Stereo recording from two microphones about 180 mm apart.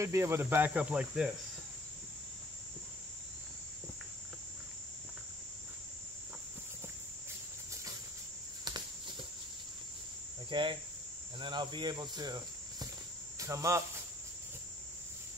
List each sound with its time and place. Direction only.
0.0 s cricket: 15° right (ahead or behind)
10.5 s cricket: 25° right (ahead or behind)
13.4 s speech: 15° right (ahead or behind)